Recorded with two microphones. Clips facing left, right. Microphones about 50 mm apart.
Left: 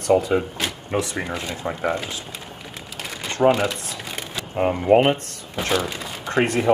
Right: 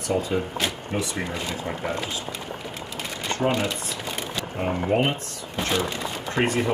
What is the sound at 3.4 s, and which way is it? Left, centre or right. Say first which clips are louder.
Speech: left 7 dB; left.